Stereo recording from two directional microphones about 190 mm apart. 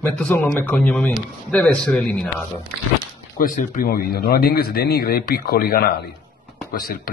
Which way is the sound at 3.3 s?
50° left (ahead or behind).